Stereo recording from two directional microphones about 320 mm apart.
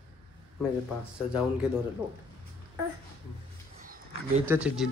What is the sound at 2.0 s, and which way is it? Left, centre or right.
Speech, centre.